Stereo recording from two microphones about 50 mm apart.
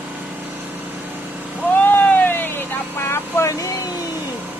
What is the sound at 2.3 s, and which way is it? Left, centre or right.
Vehicle, left.